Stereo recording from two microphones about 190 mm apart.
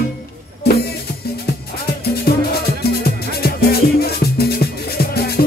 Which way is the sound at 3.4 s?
55° left (ahead or behind).